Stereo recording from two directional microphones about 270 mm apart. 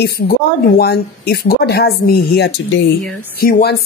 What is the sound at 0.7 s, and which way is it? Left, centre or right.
Speech, left.